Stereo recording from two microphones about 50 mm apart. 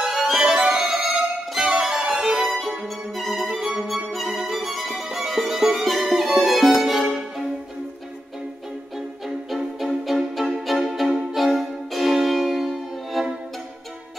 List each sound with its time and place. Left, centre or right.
0.3 s music: centre
3.4 s music: centre
3.8 s music: centre
9.8 s violin: centre
11.3 s music: centre